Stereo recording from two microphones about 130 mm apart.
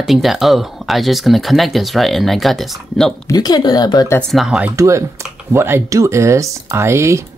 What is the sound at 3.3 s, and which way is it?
Speech, 30° left (ahead or behind).